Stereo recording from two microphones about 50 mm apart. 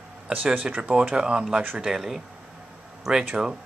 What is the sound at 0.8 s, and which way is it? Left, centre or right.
A woman's voice, right.